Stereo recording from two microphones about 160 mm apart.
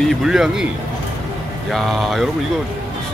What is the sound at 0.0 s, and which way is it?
Speech, centre (ahead or behind).